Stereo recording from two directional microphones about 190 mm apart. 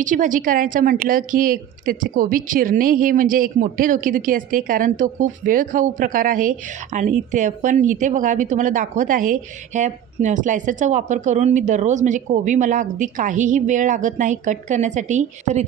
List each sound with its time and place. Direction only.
0.0 s a woman's voice: 45° right (ahead or behind)